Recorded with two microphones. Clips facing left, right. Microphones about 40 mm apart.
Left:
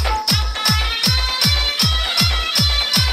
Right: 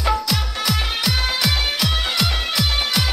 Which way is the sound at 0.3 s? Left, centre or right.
Centre.